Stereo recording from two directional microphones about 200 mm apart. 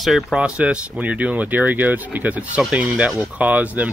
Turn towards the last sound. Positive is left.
turn(degrees=-5)  # may be behind; listen again after turning